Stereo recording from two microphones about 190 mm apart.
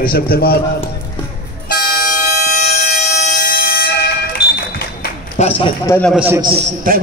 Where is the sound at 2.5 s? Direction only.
40° left (ahead or behind).